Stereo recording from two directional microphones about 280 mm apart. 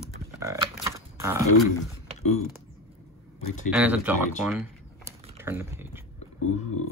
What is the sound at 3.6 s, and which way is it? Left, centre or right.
Speech, centre.